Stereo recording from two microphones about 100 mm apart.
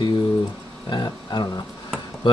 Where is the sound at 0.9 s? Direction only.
50° left (ahead or behind).